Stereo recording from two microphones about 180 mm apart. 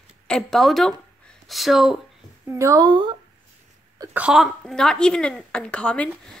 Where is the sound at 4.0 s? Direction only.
10° right (ahead or behind).